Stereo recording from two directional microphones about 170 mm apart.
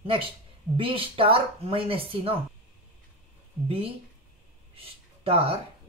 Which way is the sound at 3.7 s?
35° right (ahead or behind).